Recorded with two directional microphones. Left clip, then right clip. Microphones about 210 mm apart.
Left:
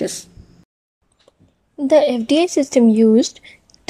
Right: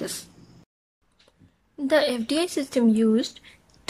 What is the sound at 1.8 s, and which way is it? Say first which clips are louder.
A woman's voice: left 8 dB; 10° left (ahead or behind).